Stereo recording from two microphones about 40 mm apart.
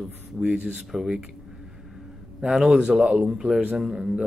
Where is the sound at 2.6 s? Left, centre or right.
Centre.